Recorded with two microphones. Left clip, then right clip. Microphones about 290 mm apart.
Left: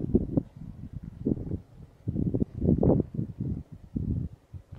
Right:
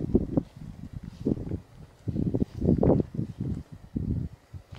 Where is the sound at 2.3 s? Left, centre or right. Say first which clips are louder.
Right 1 dB; left.